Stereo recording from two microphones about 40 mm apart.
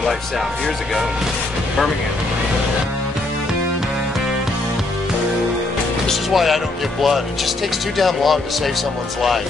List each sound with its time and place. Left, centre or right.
6.3 s speech: centre